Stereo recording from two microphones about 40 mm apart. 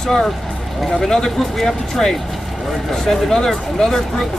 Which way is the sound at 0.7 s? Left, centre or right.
Centre.